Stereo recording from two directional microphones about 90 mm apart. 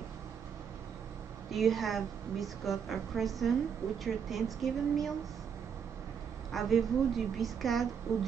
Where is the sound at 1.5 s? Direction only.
Centre (ahead or behind).